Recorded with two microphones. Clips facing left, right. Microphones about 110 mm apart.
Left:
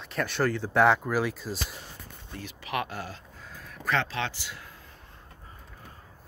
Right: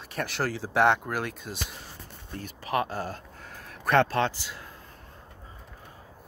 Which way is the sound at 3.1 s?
65° right (ahead or behind).